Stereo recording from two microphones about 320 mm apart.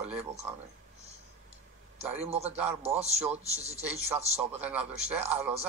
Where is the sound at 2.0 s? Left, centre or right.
Centre.